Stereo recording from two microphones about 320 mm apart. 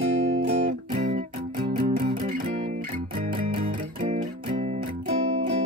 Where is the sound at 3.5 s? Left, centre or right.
Centre.